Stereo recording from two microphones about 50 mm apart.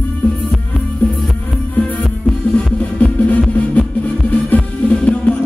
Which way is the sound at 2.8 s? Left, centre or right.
Left.